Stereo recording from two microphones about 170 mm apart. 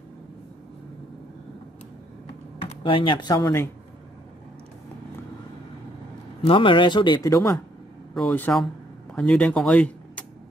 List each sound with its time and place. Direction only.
2.6 s speech: 30° left (ahead or behind)
6.4 s speech: 30° left (ahead or behind)
7.2 s speech: 15° left (ahead or behind)
8.1 s speech: 5° left (ahead or behind)